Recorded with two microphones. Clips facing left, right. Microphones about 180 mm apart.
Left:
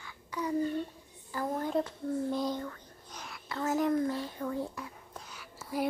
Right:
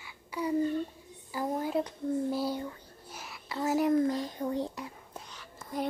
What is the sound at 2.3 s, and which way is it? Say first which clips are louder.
Whispering: right 1 dB; 10° right (ahead or behind).